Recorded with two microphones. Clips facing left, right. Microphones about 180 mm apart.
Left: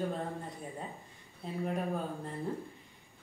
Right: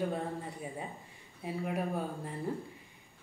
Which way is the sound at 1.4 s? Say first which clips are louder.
Right 2 dB; 10° right (ahead or behind).